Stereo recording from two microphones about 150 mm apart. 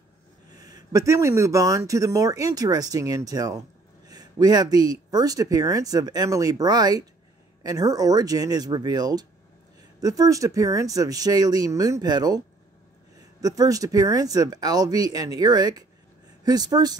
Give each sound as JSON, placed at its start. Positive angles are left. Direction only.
{"t": 0.6, "sound": "speech", "side_deg": -25}